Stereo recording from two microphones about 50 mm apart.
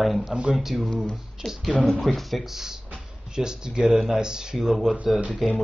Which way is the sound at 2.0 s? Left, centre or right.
Centre.